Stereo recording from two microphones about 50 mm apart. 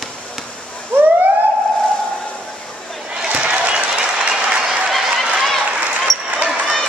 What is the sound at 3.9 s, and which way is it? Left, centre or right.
Applause, centre.